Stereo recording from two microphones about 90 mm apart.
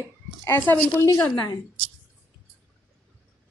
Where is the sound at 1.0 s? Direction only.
40° left (ahead or behind).